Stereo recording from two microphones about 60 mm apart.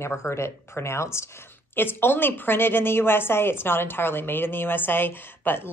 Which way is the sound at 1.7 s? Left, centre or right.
Left.